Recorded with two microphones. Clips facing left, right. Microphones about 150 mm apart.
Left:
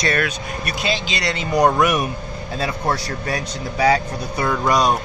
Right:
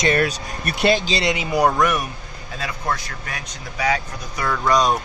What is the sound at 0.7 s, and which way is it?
Speech, 55° right (ahead or behind).